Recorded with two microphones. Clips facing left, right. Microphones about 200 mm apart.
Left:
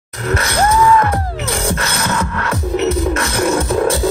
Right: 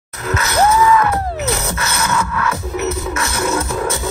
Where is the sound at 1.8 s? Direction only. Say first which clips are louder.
Even; 35° left (ahead or behind).